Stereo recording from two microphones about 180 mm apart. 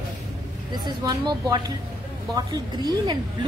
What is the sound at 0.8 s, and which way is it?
A woman's voice, 25° right (ahead or behind).